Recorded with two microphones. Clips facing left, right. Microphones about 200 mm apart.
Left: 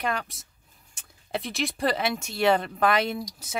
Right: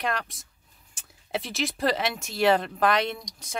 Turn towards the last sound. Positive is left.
turn(degrees=5)  # may be behind; listen again after turning